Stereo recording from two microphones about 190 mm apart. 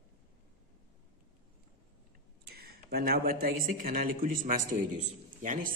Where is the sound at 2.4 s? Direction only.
55° right (ahead or behind).